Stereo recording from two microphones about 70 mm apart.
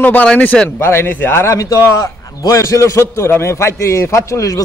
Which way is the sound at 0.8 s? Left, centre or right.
Left.